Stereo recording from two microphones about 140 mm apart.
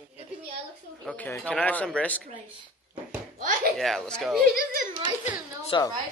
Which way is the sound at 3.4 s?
80° right.